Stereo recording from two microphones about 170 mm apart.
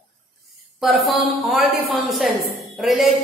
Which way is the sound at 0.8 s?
Centre (ahead or behind).